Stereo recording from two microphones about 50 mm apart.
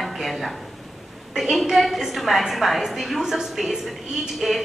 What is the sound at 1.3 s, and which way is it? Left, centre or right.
A woman's voice, centre.